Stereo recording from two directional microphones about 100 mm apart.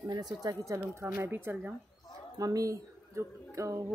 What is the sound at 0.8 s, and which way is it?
Speech, 25° right (ahead or behind).